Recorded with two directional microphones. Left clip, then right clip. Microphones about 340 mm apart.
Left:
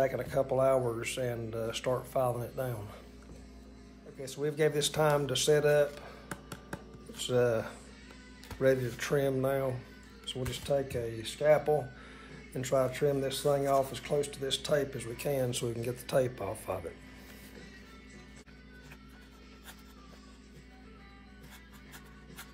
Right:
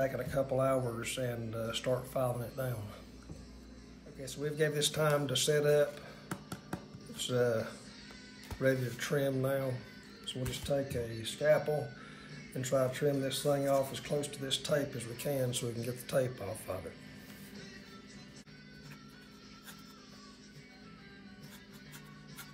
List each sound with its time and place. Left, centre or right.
0.0 s speech: centre
4.2 s speech: centre
6.5 s music: centre
8.5 s speech: centre